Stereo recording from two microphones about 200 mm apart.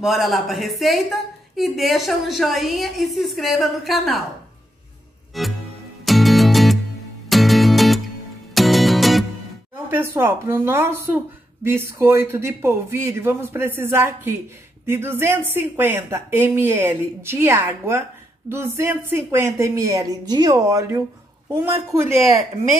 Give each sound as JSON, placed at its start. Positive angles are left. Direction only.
{"t": 0.0, "sound": "a woman's voice", "side_deg": 0}
{"t": 5.4, "sound": "a woman's voice", "side_deg": 0}
{"t": 6.0, "sound": "music", "side_deg": 0}
{"t": 9.8, "sound": "speech", "side_deg": -10}